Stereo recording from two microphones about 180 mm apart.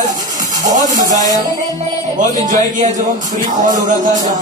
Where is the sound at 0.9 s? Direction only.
45° right (ahead or behind).